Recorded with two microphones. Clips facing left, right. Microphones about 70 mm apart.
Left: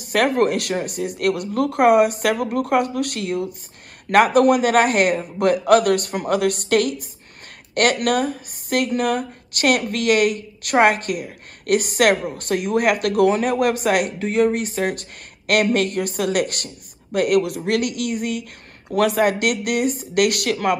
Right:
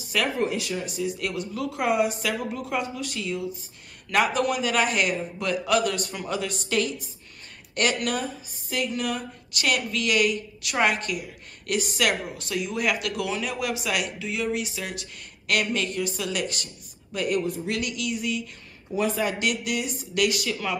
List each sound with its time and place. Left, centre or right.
0.0 s speech: left
19.4 s speech: left